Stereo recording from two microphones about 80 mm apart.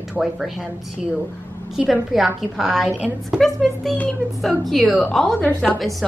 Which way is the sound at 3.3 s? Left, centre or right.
Centre.